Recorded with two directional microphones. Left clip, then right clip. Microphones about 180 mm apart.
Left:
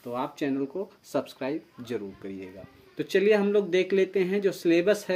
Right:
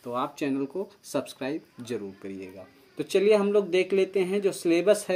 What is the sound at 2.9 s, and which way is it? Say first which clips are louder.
Speech: right 1 dB; 5° left (ahead or behind).